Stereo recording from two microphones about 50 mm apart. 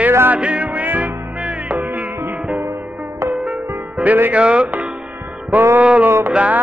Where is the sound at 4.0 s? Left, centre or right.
Centre.